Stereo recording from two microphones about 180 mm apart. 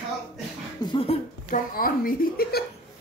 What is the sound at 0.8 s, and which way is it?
Speech, 30° left (ahead or behind).